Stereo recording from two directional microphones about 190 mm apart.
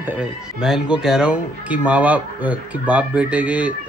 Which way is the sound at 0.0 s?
5° right (ahead or behind).